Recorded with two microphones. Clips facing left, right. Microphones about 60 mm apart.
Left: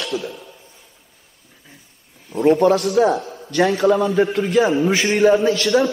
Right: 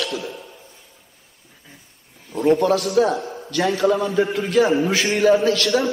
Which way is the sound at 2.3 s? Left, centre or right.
Left.